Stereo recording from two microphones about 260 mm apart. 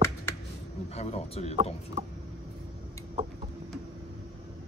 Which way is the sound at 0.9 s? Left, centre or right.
Left.